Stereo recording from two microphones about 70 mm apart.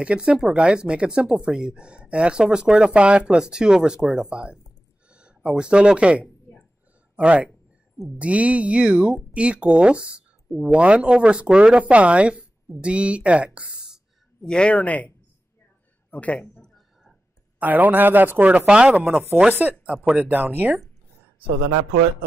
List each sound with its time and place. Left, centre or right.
0.0 s speech: centre
14.4 s a man's voice: centre
16.6 s a sound: centre
17.6 s speech: right
18.7 s speech: centre